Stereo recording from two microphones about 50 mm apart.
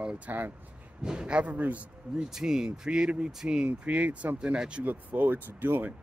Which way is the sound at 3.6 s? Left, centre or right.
Right.